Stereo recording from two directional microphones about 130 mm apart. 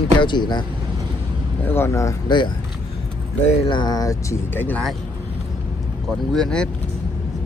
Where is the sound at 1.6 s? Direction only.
20° left (ahead or behind).